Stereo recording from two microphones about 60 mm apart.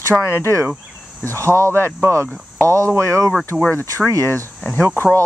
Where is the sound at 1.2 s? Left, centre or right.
Right.